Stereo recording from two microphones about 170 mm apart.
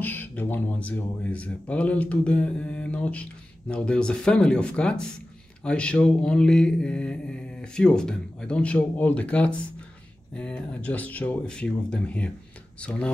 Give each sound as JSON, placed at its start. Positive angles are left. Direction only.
{"t": 0.0, "sound": "speech", "side_deg": 10}
{"t": 5.6, "sound": "mantra", "side_deg": 5}
{"t": 10.3, "sound": "speech", "side_deg": 5}